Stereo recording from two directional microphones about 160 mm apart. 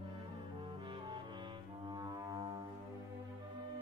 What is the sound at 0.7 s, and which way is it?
Music, 30° right (ahead or behind).